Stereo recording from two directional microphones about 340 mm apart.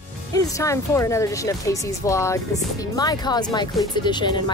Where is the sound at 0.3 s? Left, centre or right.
Centre.